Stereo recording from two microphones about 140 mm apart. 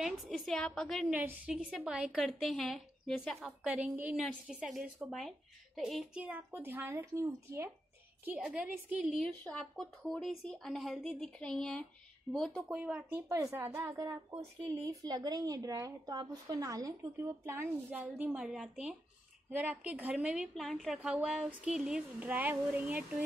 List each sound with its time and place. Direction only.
0.0 s a woman's voice: centre (ahead or behind)
1.0 s a woman's voice: 15° right (ahead or behind)
3.4 s a woman's voice: 10° right (ahead or behind)
8.5 s speech: 10° right (ahead or behind)
9.4 s a woman's voice: 5° left (ahead or behind)
12.7 s speech: 10° right (ahead or behind)
13.3 s a woman's voice: 25° right (ahead or behind)
13.6 s a woman's voice: 15° right (ahead or behind)